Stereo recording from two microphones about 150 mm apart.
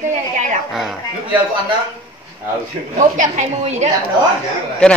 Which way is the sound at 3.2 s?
55° right (ahead or behind).